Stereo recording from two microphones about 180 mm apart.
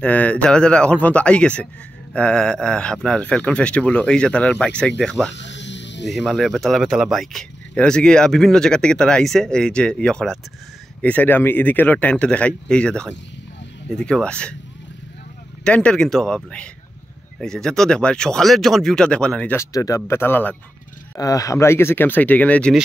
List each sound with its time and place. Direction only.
0.0 s speech: 10° left (ahead or behind)
5.3 s snake: 80° left
6.0 s speech: centre (ahead or behind)
15.6 s speech: 5° left (ahead or behind)